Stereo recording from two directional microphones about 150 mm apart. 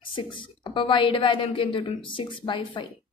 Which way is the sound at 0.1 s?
35° left (ahead or behind).